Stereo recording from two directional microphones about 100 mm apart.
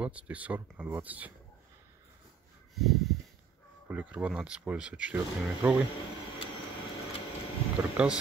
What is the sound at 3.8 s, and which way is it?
Speech, 15° right (ahead or behind).